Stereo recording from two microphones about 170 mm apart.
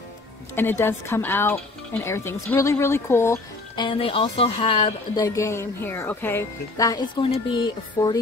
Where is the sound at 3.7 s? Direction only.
30° left (ahead or behind).